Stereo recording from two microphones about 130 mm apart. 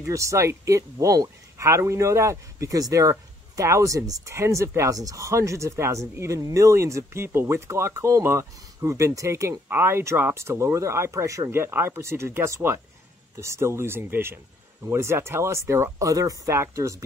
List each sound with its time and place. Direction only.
0.0 s speech: 25° right (ahead or behind)